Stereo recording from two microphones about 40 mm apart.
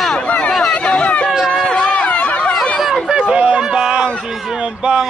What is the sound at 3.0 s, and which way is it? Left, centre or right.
Run, right.